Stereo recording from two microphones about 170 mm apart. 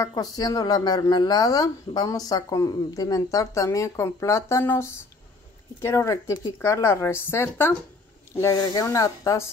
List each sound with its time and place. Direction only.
0.0 s speech: 25° left (ahead or behind)